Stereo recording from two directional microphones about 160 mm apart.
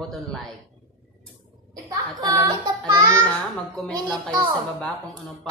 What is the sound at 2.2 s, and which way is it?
Speech, 20° right (ahead or behind).